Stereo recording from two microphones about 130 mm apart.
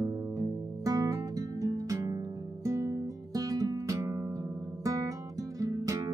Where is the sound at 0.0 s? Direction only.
25° right (ahead or behind).